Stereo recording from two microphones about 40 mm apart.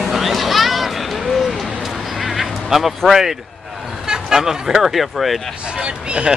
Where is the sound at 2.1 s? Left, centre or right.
Centre.